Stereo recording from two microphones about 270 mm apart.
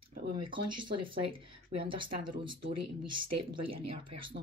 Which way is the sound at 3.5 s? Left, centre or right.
Centre.